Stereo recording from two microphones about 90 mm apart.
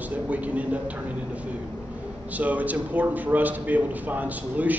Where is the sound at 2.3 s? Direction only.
15° right (ahead or behind).